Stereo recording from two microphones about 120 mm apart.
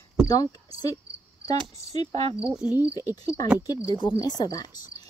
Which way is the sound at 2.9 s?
30° left (ahead or behind).